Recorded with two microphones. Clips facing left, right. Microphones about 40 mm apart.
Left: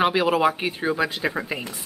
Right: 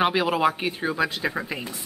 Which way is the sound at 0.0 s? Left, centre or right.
Centre.